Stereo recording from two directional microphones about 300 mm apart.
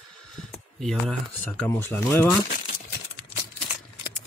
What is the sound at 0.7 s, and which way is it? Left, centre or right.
Speech, centre.